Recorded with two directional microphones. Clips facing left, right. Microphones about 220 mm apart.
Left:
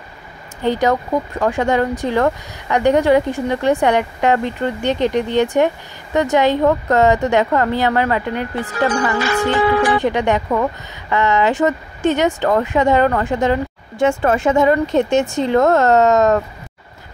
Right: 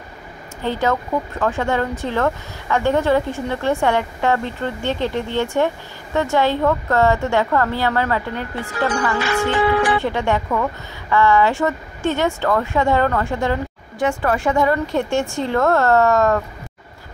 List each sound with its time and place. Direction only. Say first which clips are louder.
0.7 s speech: left 4 dB; 15° left (ahead or behind)
9.2 s music: left 1 dB; 40° left (ahead or behind)
9.9 s speech: left 3 dB; 15° left (ahead or behind)